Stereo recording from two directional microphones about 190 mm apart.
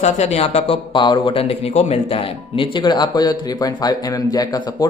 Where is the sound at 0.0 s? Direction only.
35° left (ahead or behind).